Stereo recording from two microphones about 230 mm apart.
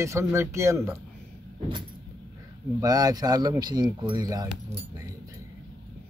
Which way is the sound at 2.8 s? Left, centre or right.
Centre.